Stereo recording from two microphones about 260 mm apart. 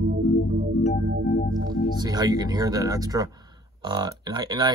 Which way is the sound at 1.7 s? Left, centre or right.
Centre.